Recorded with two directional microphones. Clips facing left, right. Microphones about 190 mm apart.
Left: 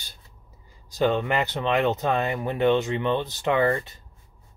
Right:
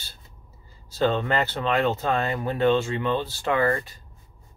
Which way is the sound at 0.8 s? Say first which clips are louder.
Even; 15° left (ahead or behind).